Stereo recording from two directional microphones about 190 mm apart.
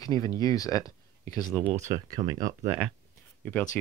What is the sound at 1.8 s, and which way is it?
Speech, 20° right (ahead or behind).